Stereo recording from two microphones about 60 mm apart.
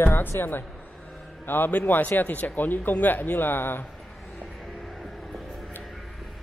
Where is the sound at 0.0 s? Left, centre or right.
Left.